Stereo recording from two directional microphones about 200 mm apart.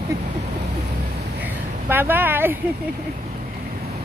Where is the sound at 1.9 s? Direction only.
10° right (ahead or behind).